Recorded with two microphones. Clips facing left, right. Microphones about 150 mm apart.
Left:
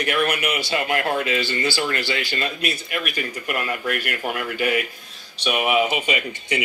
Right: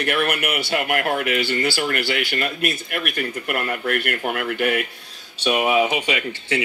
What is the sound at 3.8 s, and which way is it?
Speech, 50° right (ahead or behind).